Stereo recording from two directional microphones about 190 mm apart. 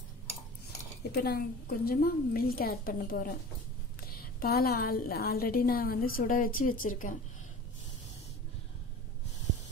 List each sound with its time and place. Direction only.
1.1 s a woman's voice: 55° left (ahead or behind)